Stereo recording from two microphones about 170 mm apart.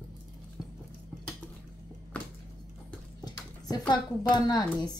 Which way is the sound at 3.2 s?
25° left (ahead or behind).